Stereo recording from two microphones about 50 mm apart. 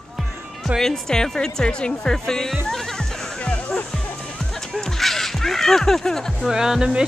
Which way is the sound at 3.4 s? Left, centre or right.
Left.